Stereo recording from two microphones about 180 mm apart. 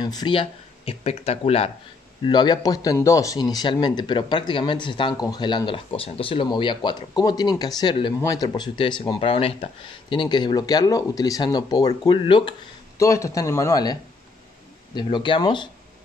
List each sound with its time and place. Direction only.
0.0 s speech: 25° left (ahead or behind)
15.0 s speech: 25° left (ahead or behind)